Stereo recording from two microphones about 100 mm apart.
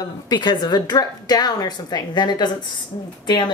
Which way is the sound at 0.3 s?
50° left (ahead or behind).